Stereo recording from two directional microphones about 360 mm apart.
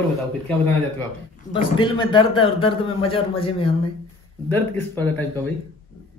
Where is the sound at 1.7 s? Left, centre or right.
Centre.